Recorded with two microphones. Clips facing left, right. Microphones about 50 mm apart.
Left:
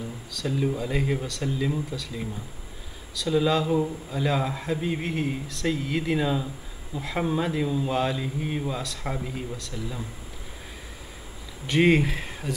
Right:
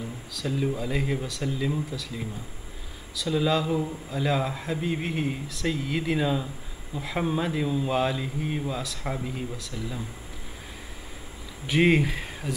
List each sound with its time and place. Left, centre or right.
0.3 s a man's voice: centre
11.6 s speech: centre